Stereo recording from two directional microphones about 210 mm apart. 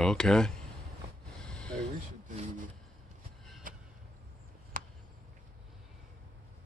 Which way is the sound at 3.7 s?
40° right (ahead or behind).